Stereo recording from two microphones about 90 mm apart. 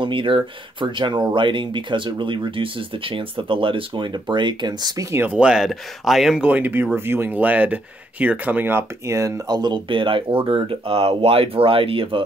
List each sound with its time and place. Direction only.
0.0 s speech: 70° right (ahead or behind); by 5.0 s 50° right (ahead or behind)
5.1 s speech: 20° right (ahead or behind)
5.4 s speech: 5° right (ahead or behind)
6.4 s speech: 20° right (ahead or behind); by 9.4 s 35° right (ahead or behind)
9.5 s speech: 55° right (ahead or behind); by 12.2 s 80° right